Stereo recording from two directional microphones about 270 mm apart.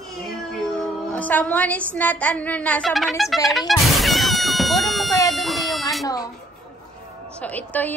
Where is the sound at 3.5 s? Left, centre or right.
Centre.